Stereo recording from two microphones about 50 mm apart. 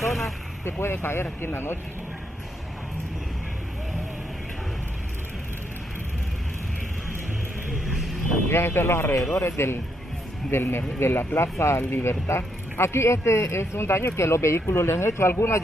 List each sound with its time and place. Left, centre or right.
0.7 s speech: left
8.5 s speech: left
11.3 s speech: left